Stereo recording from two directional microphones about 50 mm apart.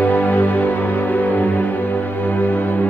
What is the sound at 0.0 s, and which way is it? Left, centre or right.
Music, left.